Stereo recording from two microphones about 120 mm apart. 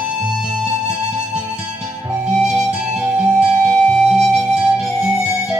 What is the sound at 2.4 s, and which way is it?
Music, 5° right (ahead or behind).